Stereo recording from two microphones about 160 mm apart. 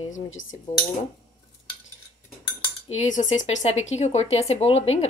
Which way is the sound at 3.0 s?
50° left (ahead or behind).